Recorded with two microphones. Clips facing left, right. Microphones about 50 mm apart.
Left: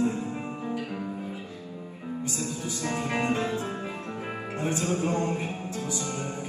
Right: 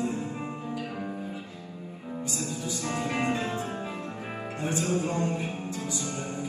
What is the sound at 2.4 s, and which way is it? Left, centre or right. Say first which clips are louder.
Music: even; left.